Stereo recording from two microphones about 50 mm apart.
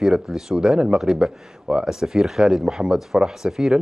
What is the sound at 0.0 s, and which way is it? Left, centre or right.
Speech, centre.